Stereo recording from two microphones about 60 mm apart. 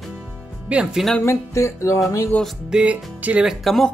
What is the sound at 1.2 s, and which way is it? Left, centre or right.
Music, left.